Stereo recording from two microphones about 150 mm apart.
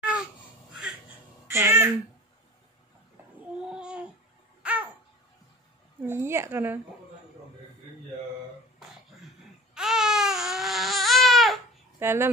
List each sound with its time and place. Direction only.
0.0 s babbling: 5° right (ahead or behind)
1.5 s a woman's voice: 15° right (ahead or behind)
3.3 s babbling: 5° right (ahead or behind)
6.0 s a woman's voice: 15° right (ahead or behind)
9.8 s baby cry: 5° right (ahead or behind)
12.0 s a woman's voice: 15° right (ahead or behind)